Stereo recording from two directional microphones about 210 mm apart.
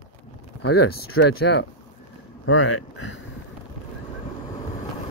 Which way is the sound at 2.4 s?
65° left (ahead or behind).